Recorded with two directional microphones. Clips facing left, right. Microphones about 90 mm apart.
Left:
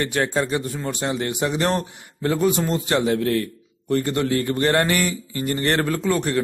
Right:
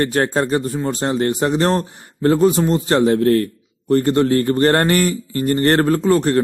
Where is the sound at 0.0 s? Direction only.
40° right (ahead or behind).